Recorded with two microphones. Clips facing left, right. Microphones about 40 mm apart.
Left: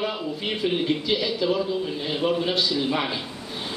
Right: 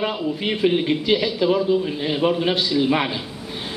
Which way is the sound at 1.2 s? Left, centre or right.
Centre.